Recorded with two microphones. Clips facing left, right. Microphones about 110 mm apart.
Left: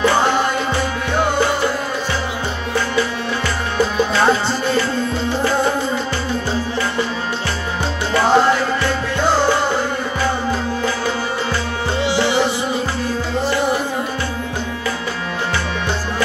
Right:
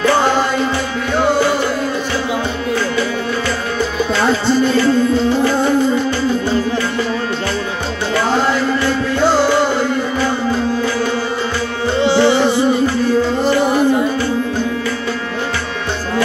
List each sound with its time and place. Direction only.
12.0 s music: 30° right (ahead or behind)